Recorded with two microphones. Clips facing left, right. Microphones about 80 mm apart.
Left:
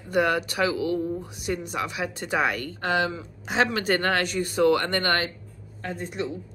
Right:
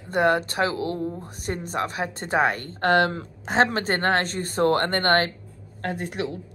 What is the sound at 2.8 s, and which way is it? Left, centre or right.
Speech, right.